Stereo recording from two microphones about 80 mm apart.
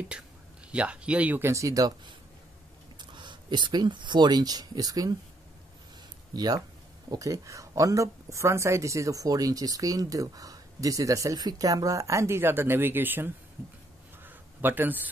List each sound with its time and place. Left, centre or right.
0.7 s speech: centre
1.4 s speech: right
3.0 s speech: right
6.3 s speech: right
7.1 s speech: right
14.2 s a sound: right